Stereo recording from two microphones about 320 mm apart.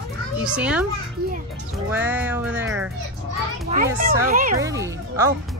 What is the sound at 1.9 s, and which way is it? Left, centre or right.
Speech, centre.